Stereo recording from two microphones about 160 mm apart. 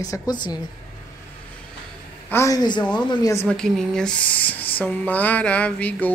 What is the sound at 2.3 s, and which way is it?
A woman's voice, 20° left (ahead or behind).